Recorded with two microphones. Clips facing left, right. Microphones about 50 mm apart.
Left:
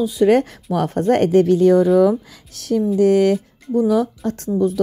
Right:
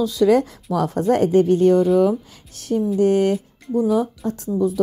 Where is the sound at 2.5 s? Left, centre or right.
Left.